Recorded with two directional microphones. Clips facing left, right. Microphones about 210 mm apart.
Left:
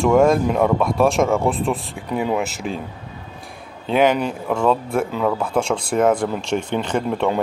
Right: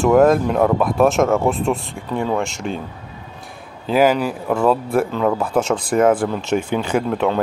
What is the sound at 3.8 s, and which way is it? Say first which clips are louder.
Speech: right 1 dB; 5° right (ahead or behind).